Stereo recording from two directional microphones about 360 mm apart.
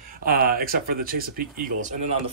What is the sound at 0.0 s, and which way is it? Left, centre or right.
Speech, right.